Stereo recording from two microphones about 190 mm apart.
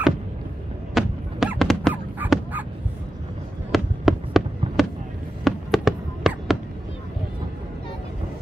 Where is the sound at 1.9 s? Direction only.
10° right (ahead or behind).